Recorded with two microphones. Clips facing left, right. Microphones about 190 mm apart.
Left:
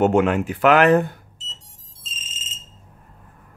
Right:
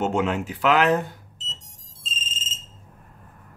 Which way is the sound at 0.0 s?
60° left (ahead or behind).